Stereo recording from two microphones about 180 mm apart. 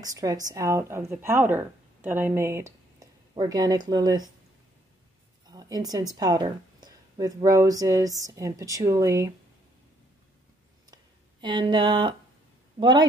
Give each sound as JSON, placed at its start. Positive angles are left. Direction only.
{"t": 0.0, "sound": "speech", "side_deg": -20}
{"t": 5.5, "sound": "a woman's voice", "side_deg": -20}
{"t": 11.4, "sound": "speech", "side_deg": -25}